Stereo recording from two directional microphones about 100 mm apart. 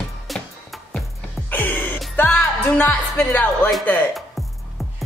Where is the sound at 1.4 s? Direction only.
20° left (ahead or behind).